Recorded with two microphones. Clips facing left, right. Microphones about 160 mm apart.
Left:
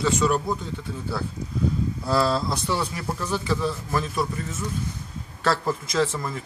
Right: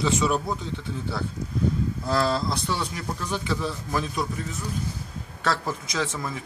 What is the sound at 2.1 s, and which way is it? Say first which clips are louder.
Speech: left 2 dB; centre (ahead or behind).